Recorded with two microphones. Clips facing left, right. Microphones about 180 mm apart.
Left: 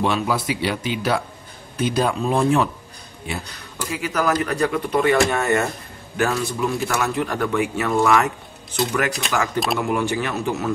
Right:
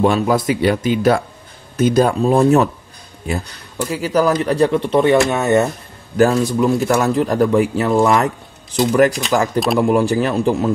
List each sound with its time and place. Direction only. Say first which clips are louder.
0.0 s speech: right 6 dB; 45° right (ahead or behind)
3.9 s speech: right 6 dB; 35° right (ahead or behind)
6.1 s a man's voice: right 8 dB; 35° right (ahead or behind)